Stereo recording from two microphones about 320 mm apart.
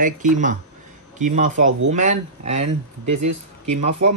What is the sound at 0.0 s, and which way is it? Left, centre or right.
Speech, right.